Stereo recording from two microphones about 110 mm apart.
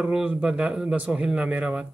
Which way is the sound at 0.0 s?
10° right (ahead or behind).